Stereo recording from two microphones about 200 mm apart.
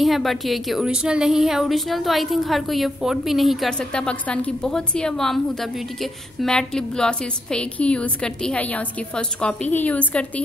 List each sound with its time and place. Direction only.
0.0 s a woman's voice: centre (ahead or behind)